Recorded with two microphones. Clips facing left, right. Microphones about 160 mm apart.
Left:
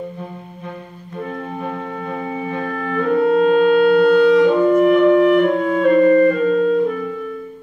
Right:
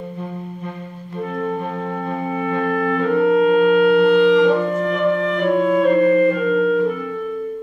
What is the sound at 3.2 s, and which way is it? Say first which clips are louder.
Music: left 1 dB; 35° left (ahead or behind).